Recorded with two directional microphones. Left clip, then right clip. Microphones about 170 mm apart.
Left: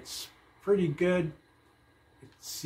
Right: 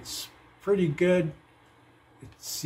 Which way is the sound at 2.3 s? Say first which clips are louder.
Right 5 dB; 30° right (ahead or behind).